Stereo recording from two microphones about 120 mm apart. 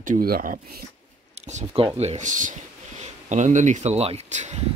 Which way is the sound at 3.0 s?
75° right (ahead or behind).